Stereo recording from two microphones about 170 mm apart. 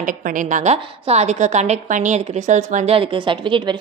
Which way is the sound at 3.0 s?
30° right (ahead or behind).